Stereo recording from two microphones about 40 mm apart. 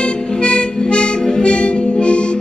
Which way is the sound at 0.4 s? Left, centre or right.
Left.